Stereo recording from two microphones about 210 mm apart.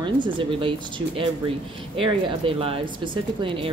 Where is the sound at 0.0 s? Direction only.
25° right (ahead or behind).